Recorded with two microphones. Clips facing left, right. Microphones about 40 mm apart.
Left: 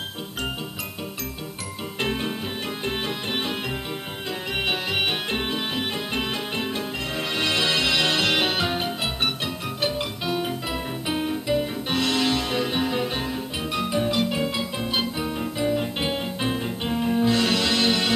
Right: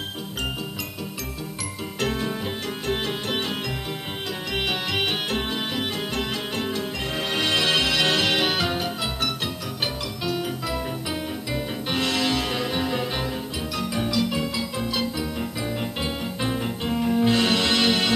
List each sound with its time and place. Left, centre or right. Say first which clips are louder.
2.0 s music: even; left
2.9 s music: right 4 dB; left
4.6 s music: even; left
8.5 s music: even; left
11.9 s music: left 1 dB; right
13.7 s music: left 2 dB; left
17.2 s music: right 1 dB; right